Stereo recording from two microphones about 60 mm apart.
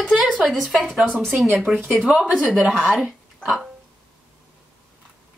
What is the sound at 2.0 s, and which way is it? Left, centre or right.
Speech, centre.